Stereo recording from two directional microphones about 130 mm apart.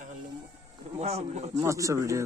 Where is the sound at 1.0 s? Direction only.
55° right (ahead or behind).